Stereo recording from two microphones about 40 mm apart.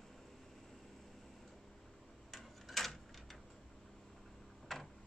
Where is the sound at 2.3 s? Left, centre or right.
Centre.